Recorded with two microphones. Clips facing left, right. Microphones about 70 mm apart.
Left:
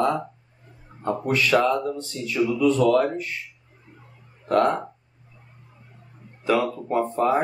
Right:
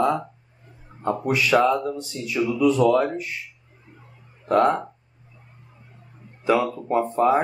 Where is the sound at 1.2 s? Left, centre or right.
Centre.